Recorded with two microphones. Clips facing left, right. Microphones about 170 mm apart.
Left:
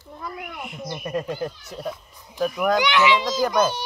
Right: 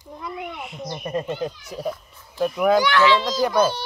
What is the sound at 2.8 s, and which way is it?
Speech, 20° left (ahead or behind).